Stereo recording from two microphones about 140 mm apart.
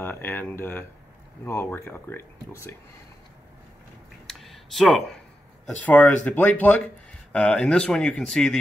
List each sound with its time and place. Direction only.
0.0 s speech: 15° left (ahead or behind)
4.3 s a sound: centre (ahead or behind)
5.8 s speech: 10° left (ahead or behind)